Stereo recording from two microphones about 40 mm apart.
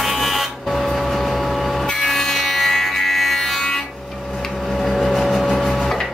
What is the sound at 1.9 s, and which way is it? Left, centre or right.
Music, centre.